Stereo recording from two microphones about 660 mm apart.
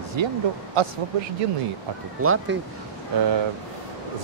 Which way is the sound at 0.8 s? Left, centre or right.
Right.